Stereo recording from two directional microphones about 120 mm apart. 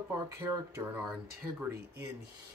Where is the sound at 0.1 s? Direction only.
25° right (ahead or behind).